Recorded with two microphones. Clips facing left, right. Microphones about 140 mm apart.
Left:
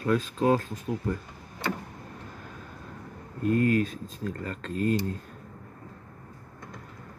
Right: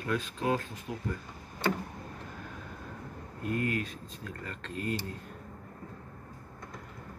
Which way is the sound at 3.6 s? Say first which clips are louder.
Left 8 dB; 40° left (ahead or behind).